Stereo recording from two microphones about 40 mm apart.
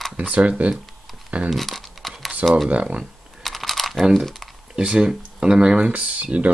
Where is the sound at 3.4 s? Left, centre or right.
Centre.